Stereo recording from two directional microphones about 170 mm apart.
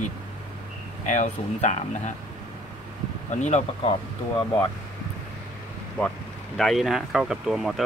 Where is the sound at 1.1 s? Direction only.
45° left (ahead or behind).